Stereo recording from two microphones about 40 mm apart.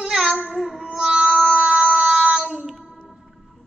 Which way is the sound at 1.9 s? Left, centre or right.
Centre.